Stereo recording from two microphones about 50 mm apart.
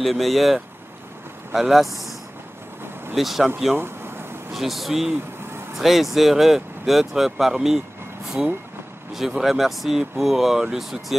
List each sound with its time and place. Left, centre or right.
0.0 s speech: centre
3.2 s speech: centre
3.7 s a sound: right
4.6 s speech: centre